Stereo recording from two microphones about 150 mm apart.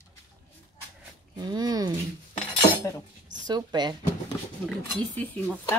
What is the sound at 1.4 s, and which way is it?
Speech, 25° right (ahead or behind).